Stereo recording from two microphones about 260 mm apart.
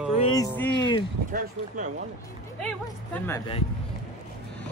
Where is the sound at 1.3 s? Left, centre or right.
Right.